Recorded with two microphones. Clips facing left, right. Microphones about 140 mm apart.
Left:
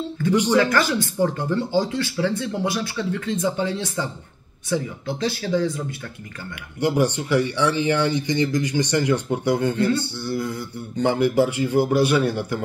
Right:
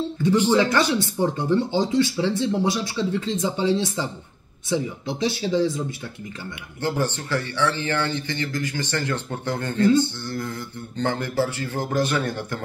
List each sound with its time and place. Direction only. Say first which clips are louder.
0.5 s speech: even; 20° right (ahead or behind)
6.8 s speech: left 5 dB; 15° left (ahead or behind)